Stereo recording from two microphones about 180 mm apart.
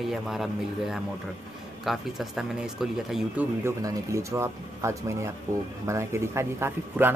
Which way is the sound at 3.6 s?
15° right (ahead or behind).